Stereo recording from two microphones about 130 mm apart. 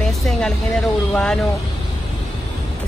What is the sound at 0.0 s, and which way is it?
Speech, 5° left (ahead or behind).